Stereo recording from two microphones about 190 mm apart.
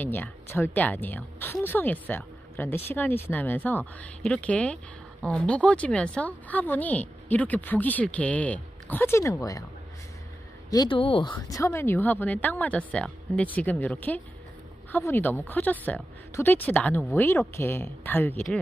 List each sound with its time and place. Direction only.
0.0 s speech: 10° left (ahead or behind)
10.7 s speech: 25° left (ahead or behind)
11.3 s speech: 15° left (ahead or behind)